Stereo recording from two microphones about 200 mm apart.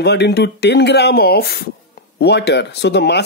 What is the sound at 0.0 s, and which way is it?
Speech, 55° left (ahead or behind).